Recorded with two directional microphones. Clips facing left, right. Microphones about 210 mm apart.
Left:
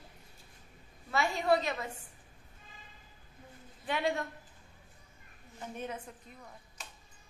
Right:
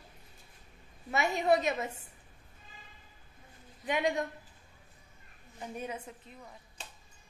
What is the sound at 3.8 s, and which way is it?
Speech, 15° right (ahead or behind).